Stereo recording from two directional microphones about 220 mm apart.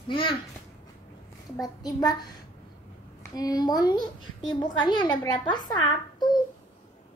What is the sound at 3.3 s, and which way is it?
A child's voice, 15° left (ahead or behind).